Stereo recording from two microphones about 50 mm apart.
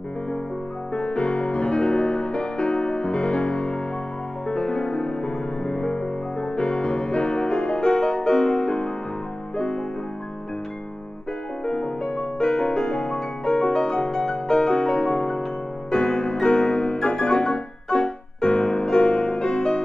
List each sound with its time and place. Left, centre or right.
0.9 s music: centre
11.6 s music: centre